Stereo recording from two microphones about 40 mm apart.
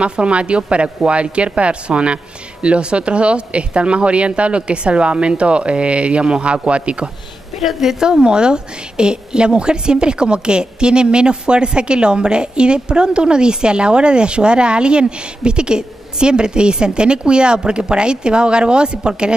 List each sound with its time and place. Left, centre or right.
0.0 s a woman's voice: right
7.6 s a woman's voice: centre